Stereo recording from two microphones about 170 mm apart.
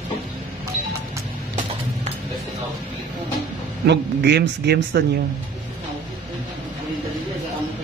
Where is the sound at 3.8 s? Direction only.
80° right.